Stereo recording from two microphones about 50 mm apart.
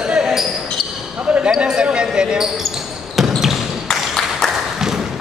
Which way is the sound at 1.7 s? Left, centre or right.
Centre.